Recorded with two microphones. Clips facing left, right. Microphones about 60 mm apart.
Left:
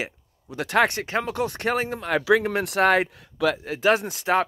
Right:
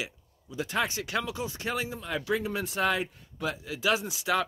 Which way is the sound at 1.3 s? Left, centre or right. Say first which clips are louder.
Left 9 dB; left.